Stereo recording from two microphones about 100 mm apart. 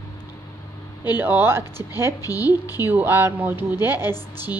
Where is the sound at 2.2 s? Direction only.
35° left (ahead or behind).